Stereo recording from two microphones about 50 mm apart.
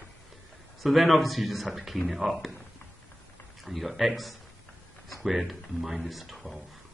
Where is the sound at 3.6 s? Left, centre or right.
Centre.